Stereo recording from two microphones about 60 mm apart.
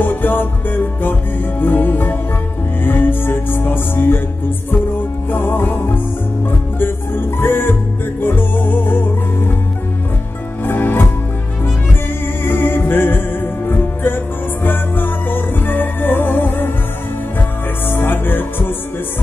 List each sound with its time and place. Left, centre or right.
0.0 s music: left
5.3 s music: left
10.6 s music: left
12.4 s music: left
17.8 s music: left